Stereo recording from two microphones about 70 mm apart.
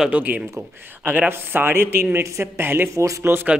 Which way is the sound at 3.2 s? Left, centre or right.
Right.